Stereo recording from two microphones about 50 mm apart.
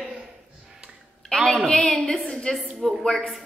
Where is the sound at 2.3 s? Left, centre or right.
Centre.